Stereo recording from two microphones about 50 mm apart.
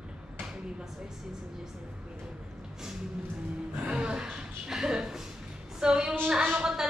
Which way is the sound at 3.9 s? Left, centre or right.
Centre.